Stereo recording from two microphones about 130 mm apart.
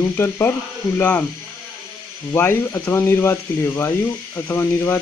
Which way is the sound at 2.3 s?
20° left (ahead or behind).